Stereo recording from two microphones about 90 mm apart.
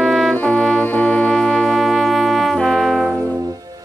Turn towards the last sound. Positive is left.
turn(degrees=0)  # may be behind; listen again after turning